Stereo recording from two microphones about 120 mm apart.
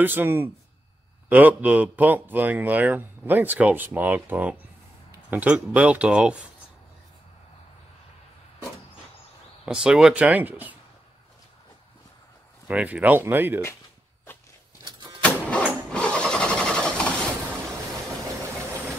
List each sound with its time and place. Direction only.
0.0 s a man's voice: 15° right (ahead or behind)
9.7 s a man's voice: 5° right (ahead or behind)
12.6 s a man's voice: 10° right (ahead or behind)
15.2 s vehicle: 10° left (ahead or behind)